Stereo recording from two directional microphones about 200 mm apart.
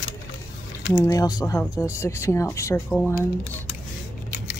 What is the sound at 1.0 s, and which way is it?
Speech, 20° left (ahead or behind).